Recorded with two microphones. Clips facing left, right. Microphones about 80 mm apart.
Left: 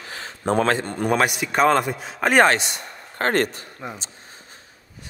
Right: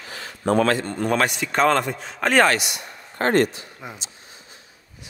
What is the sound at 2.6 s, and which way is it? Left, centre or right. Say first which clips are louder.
Speech: left 1 dB; left.